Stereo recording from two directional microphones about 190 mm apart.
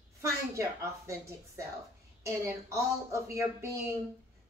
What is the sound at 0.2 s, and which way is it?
Speech, 15° right (ahead or behind).